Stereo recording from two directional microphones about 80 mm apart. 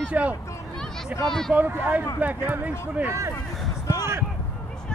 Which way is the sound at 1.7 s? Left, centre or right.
Right.